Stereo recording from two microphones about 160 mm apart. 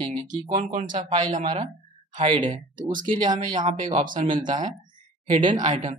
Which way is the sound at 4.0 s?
55° right (ahead or behind).